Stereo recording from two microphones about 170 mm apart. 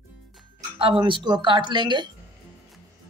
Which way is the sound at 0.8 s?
30° right (ahead or behind).